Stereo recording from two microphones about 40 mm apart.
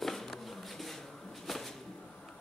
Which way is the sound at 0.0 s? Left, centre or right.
Centre.